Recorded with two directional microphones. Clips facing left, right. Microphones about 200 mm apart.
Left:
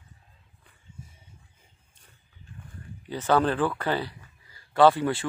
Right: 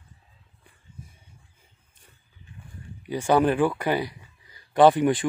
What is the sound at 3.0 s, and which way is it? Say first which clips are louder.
Speech: right 3 dB; 10° right (ahead or behind).